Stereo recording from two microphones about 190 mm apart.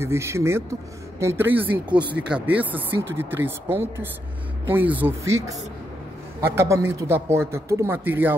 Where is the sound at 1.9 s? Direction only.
25° right (ahead or behind).